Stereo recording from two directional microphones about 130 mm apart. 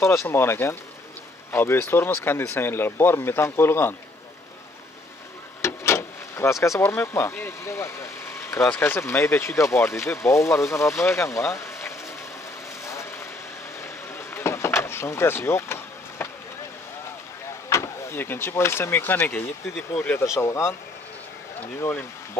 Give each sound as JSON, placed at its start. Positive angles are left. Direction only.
{"t": 0.0, "sound": "speech", "side_deg": 20}
{"t": 5.6, "sound": "speech", "side_deg": 20}
{"t": 12.8, "sound": "vehicle", "side_deg": 20}
{"t": 14.1, "sound": "vehicle", "side_deg": 20}
{"t": 17.6, "sound": "speech", "side_deg": 20}